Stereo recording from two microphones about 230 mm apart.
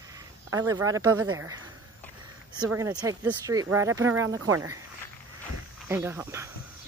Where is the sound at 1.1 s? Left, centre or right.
Right.